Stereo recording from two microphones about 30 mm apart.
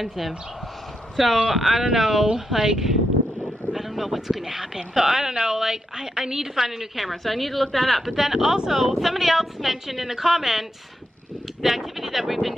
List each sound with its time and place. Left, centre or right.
0.0 s a woman's voice: centre
3.8 s a woman's voice: centre; by 6.6 s right
6.6 s a woman's voice: centre
8.2 s a woman's voice: centre